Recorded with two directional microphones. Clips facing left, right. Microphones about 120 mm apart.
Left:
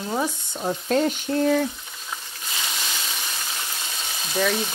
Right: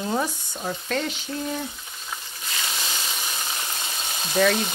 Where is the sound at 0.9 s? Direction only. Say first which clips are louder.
Left 7 dB; 40° left (ahead or behind).